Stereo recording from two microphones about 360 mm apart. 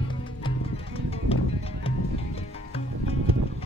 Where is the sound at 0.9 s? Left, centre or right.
Centre.